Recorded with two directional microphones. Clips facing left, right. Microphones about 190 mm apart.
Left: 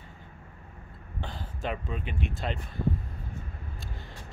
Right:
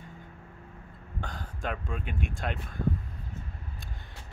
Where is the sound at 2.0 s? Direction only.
50° right (ahead or behind).